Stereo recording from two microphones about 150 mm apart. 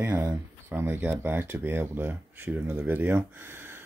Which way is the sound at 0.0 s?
20° right (ahead or behind).